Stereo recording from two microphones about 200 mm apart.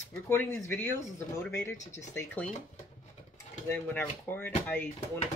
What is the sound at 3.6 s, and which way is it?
Speech, 10° left (ahead or behind).